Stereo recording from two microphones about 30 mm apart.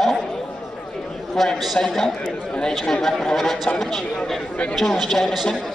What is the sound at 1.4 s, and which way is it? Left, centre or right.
Speech, centre.